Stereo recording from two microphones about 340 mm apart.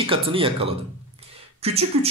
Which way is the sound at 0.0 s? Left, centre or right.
Centre.